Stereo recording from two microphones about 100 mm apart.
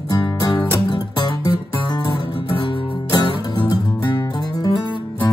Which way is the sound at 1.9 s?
45° left (ahead or behind).